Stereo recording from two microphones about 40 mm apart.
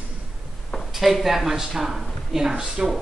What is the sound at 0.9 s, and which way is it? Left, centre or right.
A man's voice, centre.